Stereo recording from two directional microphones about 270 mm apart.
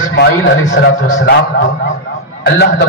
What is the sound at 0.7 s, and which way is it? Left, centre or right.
Speech, left.